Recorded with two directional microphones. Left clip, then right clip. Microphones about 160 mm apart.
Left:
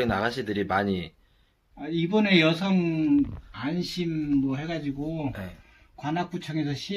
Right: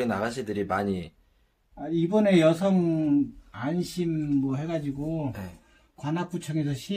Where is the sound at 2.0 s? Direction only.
20° right (ahead or behind).